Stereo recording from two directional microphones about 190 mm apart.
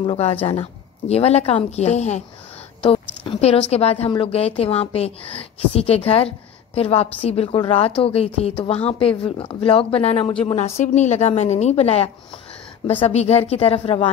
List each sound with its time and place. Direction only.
0.0 s a woman's voice: 30° left (ahead or behind)
3.3 s a woman's voice: 30° left (ahead or behind)